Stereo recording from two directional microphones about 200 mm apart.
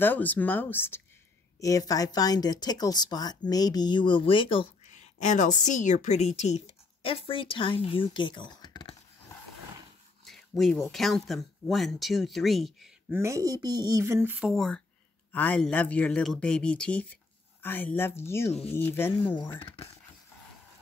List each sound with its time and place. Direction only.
0.0 s speech: 10° left (ahead or behind)
10.2 s speech: centre (ahead or behind)
13.1 s speech: 15° right (ahead or behind); by 19.3 s 10° left (ahead or behind)
19.3 s speech: 25° left (ahead or behind)